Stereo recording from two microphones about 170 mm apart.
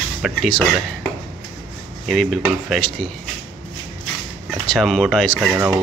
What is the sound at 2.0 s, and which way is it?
Speech, centre (ahead or behind).